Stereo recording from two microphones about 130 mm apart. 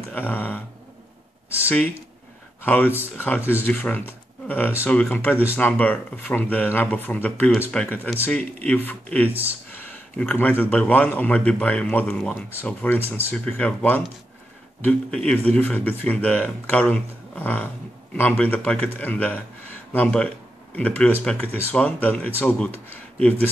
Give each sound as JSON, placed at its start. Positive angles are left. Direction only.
{"t": 0.1, "sound": "a man's voice", "side_deg": 15}
{"t": 2.6, "sound": "a man's voice", "side_deg": 15}